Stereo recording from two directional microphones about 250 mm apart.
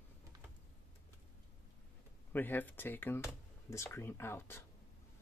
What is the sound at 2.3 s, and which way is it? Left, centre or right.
Speech, centre.